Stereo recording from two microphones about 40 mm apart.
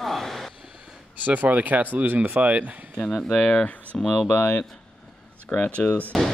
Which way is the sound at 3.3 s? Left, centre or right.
Left.